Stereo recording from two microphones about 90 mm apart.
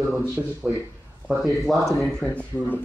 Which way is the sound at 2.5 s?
25° left (ahead or behind).